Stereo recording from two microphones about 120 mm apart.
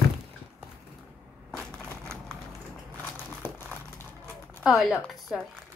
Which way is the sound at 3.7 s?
15° left (ahead or behind).